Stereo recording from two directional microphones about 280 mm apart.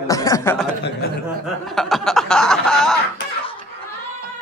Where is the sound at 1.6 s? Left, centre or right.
Centre.